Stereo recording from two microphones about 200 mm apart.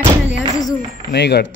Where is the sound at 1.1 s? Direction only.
55° left (ahead or behind).